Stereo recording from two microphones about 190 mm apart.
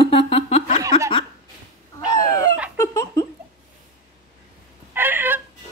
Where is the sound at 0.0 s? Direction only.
30° left (ahead or behind).